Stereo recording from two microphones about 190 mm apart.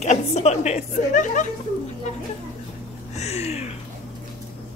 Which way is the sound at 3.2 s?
35° left (ahead or behind).